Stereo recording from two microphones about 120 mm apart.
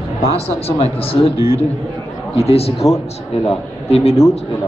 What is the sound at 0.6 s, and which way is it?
Speech, 55° left (ahead or behind).